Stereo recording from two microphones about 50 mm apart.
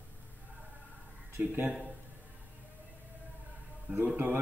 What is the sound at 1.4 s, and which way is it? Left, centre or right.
Speech, right.